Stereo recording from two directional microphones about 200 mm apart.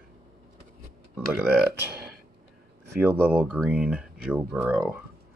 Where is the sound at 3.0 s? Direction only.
10° right (ahead or behind).